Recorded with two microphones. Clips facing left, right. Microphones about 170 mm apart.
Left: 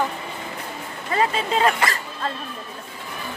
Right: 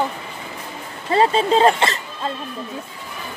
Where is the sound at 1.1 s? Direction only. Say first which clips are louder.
Right 6 dB; 30° right (ahead or behind).